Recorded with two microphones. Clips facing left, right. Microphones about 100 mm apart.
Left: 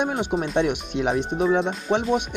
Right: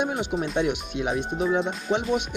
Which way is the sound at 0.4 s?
Centre (ahead or behind).